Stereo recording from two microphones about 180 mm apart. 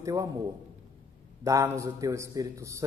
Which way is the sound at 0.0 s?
20° right (ahead or behind).